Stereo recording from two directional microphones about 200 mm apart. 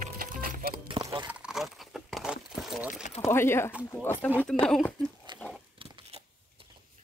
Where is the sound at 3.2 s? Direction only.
10° left (ahead or behind).